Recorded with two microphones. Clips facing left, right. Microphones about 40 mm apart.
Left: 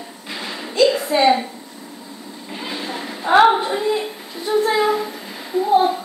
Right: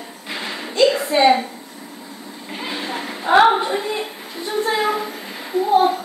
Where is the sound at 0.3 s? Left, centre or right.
Centre.